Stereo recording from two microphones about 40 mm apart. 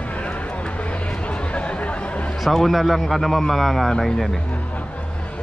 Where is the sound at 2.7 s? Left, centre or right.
Centre.